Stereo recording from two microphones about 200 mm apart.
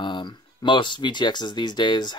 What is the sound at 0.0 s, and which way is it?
Speech, 20° left (ahead or behind).